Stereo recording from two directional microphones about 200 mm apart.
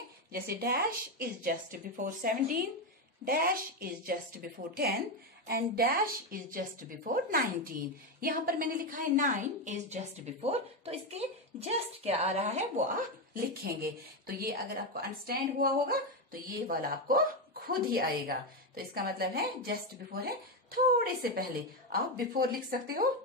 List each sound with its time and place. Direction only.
0.3 s a woman's voice: 50° right (ahead or behind); by 12.8 s 35° right (ahead or behind)
13.8 s a woman's voice: 50° right (ahead or behind)